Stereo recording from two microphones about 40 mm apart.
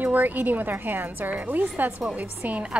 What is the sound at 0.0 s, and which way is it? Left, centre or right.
A woman's voice, right.